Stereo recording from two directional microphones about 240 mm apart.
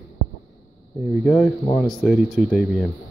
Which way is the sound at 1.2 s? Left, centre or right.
Centre.